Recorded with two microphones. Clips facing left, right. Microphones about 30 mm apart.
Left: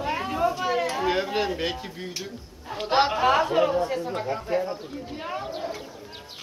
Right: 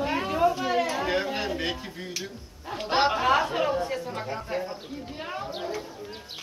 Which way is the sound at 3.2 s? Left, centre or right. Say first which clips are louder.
Left 3 dB; centre.